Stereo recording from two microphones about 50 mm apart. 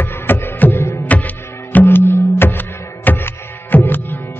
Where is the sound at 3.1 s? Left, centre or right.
Left.